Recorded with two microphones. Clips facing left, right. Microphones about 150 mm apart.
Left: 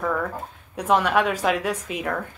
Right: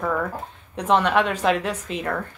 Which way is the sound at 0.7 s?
10° left (ahead or behind).